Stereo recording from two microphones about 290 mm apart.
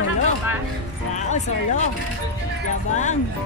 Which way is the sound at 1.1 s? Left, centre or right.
Left.